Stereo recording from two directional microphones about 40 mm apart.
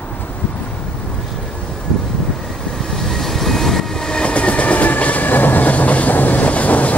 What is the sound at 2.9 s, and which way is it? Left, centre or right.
Train, centre.